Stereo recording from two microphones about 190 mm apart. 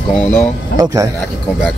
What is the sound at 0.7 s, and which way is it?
Speech, 20° right (ahead or behind).